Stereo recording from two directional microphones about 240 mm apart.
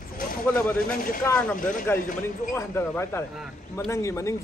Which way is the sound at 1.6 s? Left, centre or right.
Left.